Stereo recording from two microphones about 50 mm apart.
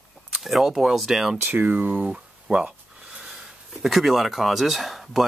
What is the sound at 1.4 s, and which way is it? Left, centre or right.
Speech, right.